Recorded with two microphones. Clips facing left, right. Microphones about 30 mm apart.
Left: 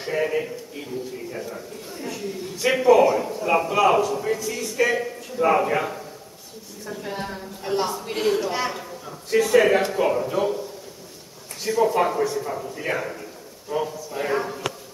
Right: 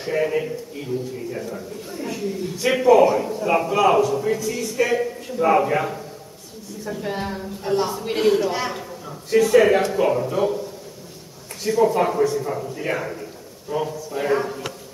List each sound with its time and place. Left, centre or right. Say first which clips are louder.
0.0 s a man's voice: right 2 dB; centre
6.9 s a woman's voice: right 4 dB; centre
7.6 s a man's voice: right 2 dB; centre
8.0 s a woman's voice: right 4 dB; centre
8.3 s a man's voice: right 2 dB; centre
11.6 s a man's voice: right 2 dB; centre